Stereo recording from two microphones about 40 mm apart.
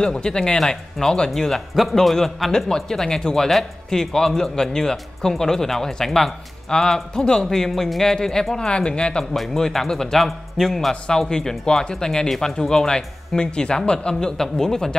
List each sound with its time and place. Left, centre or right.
0.2 s speech: left
1.3 s a man's voice: centre; by 9.2 s left
9.3 s a man's voice: centre
10.9 s a man's voice: centre